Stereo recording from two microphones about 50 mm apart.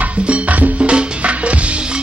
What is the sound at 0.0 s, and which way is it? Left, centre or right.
Music, right.